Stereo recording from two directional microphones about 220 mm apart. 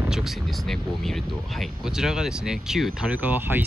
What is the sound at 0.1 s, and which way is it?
Speech, centre (ahead or behind).